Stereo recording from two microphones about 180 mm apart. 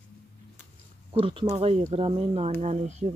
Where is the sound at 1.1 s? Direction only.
30° right (ahead or behind).